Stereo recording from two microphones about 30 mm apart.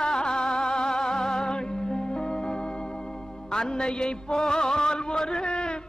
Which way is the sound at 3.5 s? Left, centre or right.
Left.